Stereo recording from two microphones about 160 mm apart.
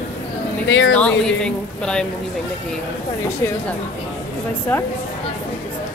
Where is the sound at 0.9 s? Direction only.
5° left (ahead or behind).